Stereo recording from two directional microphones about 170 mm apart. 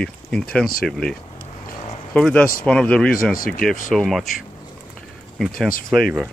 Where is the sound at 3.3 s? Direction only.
55° left (ahead or behind).